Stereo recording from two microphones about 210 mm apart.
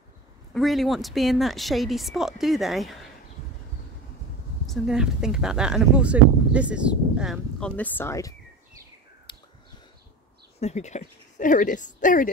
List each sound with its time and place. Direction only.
0.6 s speech: centre (ahead or behind)
4.6 s speech: centre (ahead or behind); by 8.4 s 15° left (ahead or behind)
9.3 s a sound: 25° left (ahead or behind)
10.6 s speech: 35° left (ahead or behind)